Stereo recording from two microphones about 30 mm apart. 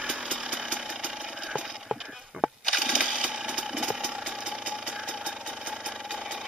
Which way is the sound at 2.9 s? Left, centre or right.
Right.